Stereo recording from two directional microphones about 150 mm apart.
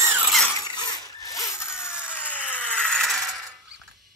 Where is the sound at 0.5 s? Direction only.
30° left (ahead or behind); by 3.2 s centre (ahead or behind).